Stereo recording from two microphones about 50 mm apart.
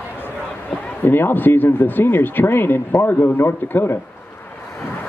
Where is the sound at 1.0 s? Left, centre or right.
Left.